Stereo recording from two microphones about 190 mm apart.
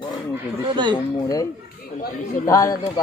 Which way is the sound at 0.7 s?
25° right (ahead or behind).